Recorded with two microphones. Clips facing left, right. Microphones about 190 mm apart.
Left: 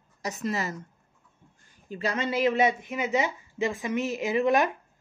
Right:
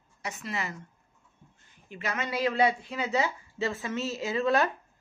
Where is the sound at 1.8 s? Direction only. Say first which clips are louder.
Left 5 dB; 35° left (ahead or behind); by 4.7 s 15° left (ahead or behind).